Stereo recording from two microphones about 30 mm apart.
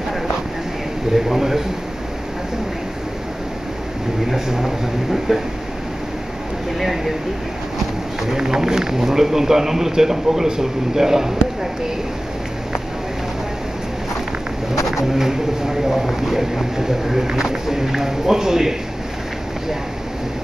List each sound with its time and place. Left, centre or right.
1.1 s a man's voice: centre
4.5 s a man's voice: centre
8.3 s a man's voice: right
15.1 s a man's voice: centre